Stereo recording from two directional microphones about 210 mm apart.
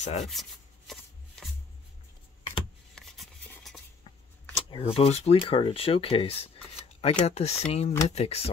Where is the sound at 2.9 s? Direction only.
Centre (ahead or behind).